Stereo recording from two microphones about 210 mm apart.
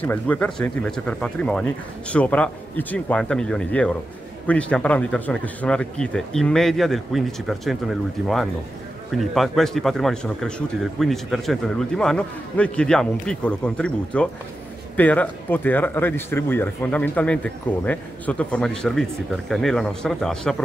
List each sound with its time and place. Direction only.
0.0 s a man's voice: 5° left (ahead or behind)